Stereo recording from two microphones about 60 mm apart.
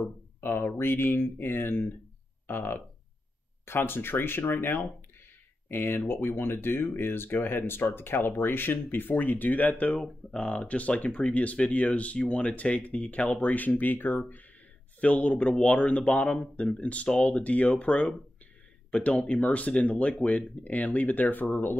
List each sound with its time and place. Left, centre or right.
0.0 s speech: left
15.0 s speech: left